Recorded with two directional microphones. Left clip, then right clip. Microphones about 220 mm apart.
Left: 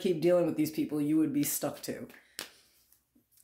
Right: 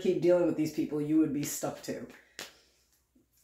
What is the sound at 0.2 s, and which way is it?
Speech, 40° left (ahead or behind).